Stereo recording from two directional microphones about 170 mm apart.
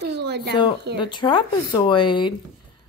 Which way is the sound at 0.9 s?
25° left (ahead or behind).